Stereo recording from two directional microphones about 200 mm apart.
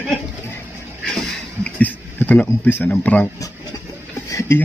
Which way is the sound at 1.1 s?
5° left (ahead or behind).